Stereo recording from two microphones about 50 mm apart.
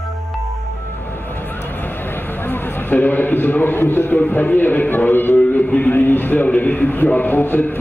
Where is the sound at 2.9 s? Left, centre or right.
Left.